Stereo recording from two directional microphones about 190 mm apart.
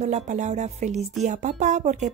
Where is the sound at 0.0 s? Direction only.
40° right (ahead or behind).